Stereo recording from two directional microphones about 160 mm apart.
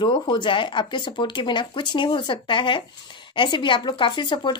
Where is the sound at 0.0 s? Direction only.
30° left (ahead or behind).